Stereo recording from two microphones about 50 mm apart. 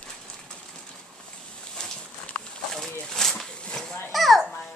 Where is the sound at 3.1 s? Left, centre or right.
Centre.